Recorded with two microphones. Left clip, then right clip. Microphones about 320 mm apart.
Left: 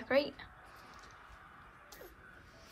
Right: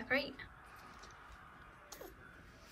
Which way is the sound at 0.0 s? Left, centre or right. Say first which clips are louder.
Left 5 dB; centre.